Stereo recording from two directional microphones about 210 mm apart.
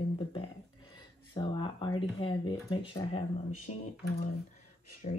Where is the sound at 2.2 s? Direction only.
20° left (ahead or behind).